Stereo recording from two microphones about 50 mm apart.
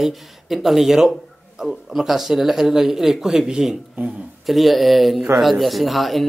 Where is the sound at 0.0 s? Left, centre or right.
Centre.